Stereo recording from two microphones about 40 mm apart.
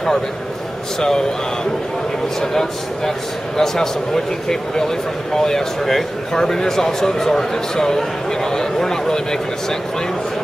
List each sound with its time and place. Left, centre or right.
0.9 s a man's voice: centre